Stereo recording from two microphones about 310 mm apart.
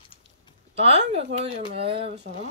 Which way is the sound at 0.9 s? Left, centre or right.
Right.